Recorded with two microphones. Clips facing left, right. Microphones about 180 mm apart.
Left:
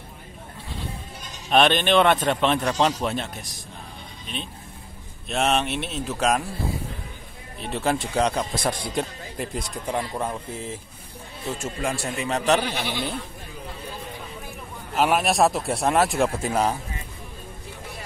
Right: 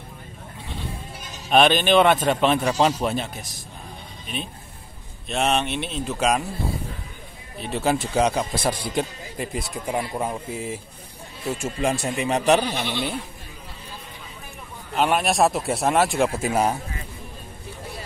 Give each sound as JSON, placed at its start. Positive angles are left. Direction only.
{"t": 1.5, "sound": "a man's voice", "side_deg": -5}
{"t": 7.6, "sound": "a man's voice", "side_deg": 0}
{"t": 11.8, "sound": "a man's voice", "side_deg": -20}
{"t": 12.6, "sound": "speech", "side_deg": 10}
{"t": 15.0, "sound": "a man's voice", "side_deg": 0}